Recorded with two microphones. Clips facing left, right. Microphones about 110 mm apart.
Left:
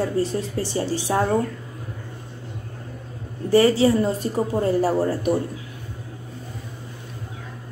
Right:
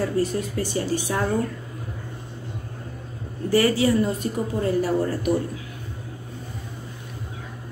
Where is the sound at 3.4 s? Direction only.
25° left (ahead or behind).